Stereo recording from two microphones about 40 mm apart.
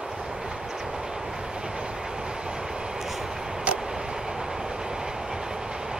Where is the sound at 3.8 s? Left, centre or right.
Centre.